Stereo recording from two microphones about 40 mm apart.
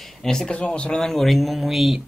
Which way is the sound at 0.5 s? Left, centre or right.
Left.